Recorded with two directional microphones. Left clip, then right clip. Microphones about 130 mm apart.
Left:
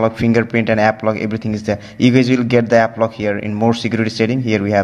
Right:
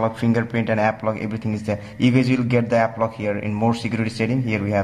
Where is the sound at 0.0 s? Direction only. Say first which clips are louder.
Left 6 dB; 30° left (ahead or behind).